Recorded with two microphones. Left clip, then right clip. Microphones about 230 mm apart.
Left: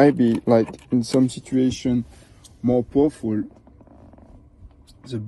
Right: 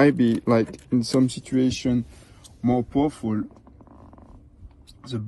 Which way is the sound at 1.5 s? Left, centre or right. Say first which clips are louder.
Left 1 dB; centre.